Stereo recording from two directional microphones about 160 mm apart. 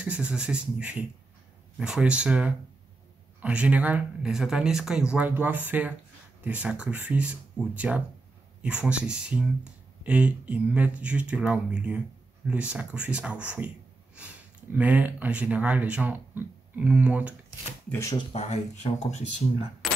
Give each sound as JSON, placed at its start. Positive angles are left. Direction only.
{"t": 0.0, "sound": "speech", "side_deg": -10}
{"t": 18.3, "sound": "speech", "side_deg": 45}
{"t": 19.8, "sound": "mechanisms", "side_deg": 0}